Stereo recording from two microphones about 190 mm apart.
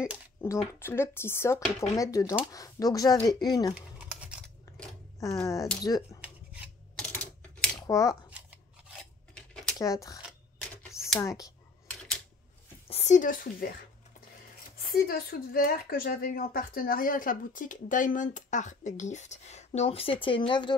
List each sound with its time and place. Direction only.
0.4 s speech: 15° left (ahead or behind)
3.7 s a sound: 5° right (ahead or behind)
4.7 s a sound: 15° left (ahead or behind)
5.2 s speech: 15° left (ahead or behind)
7.0 s typewriter: 5° left (ahead or behind)
7.8 s scissors: 15° left (ahead or behind)
8.1 s shuffling cards: 5° right (ahead or behind)
9.3 s a sound: 5° left (ahead or behind)
9.8 s speech: 15° left (ahead or behind)
10.8 s a sound: 15° left (ahead or behind)
11.1 s speech: 15° left (ahead or behind)
11.9 s typewriter: 5° left (ahead or behind)
12.8 s speech: 35° left (ahead or behind)
15.0 s speech: 50° left (ahead or behind); by 20.7 s 25° left (ahead or behind)